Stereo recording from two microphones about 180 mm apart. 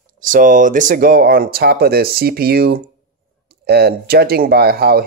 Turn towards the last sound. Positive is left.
turn(degrees=-60)  # may be behind; listen again after turning